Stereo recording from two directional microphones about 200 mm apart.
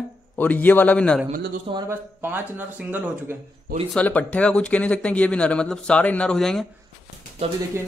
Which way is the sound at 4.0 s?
5° left (ahead or behind).